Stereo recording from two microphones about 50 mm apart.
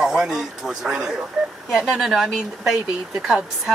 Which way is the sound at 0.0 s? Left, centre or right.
Centre.